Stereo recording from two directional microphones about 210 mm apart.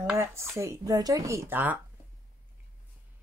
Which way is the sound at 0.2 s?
10° right (ahead or behind).